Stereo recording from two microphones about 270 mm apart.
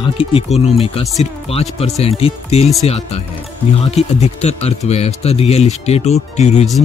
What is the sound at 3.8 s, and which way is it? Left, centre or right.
Speech, left.